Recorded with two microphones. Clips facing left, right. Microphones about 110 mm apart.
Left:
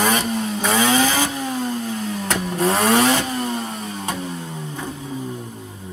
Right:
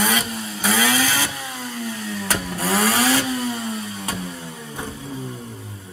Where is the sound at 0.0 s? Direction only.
30° left (ahead or behind).